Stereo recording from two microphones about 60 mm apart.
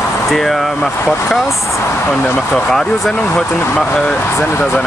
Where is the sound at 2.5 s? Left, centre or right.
Centre.